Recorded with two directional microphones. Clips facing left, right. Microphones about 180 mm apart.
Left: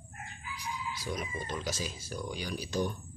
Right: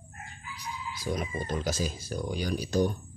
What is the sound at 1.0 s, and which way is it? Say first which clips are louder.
Speech: right 7 dB; 35° right (ahead or behind).